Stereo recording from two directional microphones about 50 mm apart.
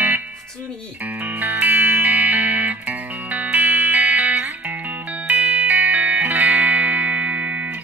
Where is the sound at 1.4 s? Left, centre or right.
Right.